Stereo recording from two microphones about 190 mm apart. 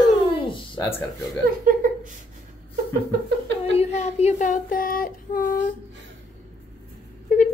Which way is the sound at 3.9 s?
35° left (ahead or behind).